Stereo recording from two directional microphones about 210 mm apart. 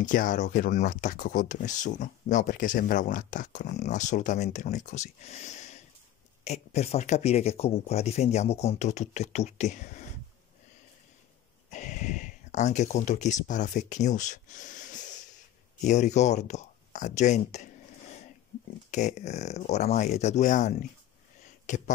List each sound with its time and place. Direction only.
0.0 s speech: 40° left (ahead or behind)
11.7 s speech: 35° left (ahead or behind)
18.9 s speech: 35° left (ahead or behind)